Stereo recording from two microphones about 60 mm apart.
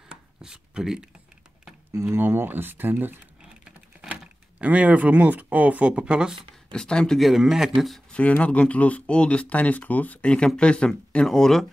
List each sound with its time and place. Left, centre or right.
0.1 s a sound: centre
2.0 s speech: right
4.6 s speech: right
6.7 s speech: centre
7.2 s a man's voice: centre
8.1 s speech: left
11.2 s a man's voice: centre